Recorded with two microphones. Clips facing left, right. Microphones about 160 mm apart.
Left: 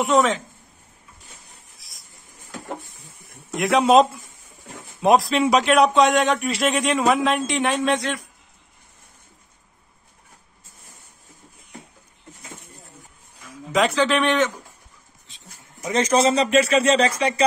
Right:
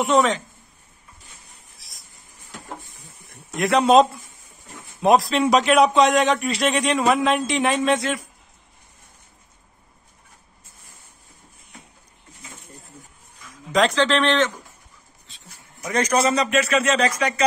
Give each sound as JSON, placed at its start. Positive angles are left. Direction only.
{"t": 0.0, "sound": "a man's voice", "side_deg": 0}
{"t": 1.8, "sound": "a sound", "side_deg": 0}
{"t": 3.3, "sound": "a man's voice", "side_deg": 0}
{"t": 13.7, "sound": "a man's voice", "side_deg": 10}